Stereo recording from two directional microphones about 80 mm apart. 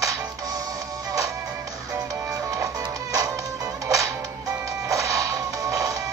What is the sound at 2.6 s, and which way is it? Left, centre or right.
Music, right.